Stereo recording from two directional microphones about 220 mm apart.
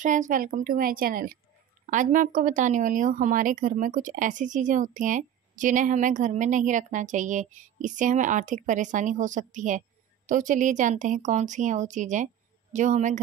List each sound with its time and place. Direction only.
0.0 s a woman's voice: 35° right (ahead or behind)